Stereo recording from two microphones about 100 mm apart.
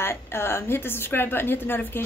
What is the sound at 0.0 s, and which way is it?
A woman's voice, 25° left (ahead or behind).